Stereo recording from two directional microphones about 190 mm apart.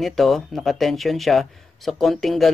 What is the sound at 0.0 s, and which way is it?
Speech, centre (ahead or behind).